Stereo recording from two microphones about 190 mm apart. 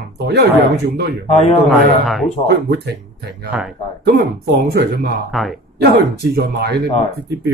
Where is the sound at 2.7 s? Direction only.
60° right (ahead or behind).